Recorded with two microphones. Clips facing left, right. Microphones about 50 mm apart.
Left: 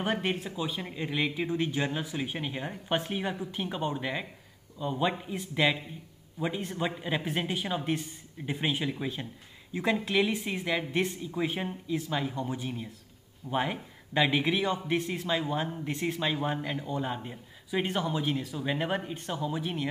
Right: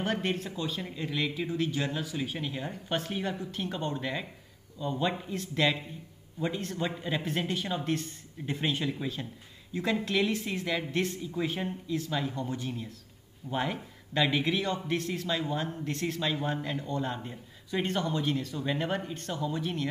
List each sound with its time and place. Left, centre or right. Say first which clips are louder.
0.0 s a man's voice: left 1 dB; centre